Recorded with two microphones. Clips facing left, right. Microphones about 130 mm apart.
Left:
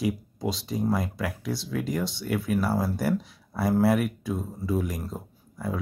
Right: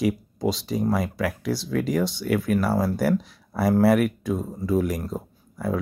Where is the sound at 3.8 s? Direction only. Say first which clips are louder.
Right 4 dB; 75° right (ahead or behind).